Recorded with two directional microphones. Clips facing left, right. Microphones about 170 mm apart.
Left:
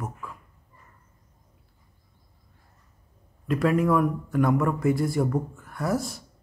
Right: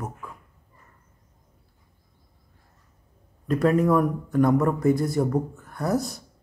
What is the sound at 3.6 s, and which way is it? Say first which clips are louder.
Speech: right 2 dB; 40° right (ahead or behind).